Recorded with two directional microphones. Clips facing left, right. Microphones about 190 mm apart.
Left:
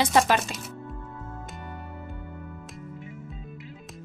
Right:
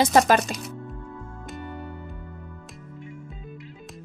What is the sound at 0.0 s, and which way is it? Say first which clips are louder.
Speech: right 3 dB; 45° right (ahead or behind).